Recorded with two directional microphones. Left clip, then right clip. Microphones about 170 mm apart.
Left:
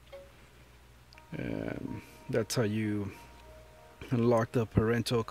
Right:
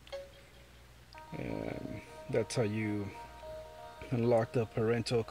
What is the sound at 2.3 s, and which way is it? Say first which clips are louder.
Speech: left 2 dB; 25° left (ahead or behind).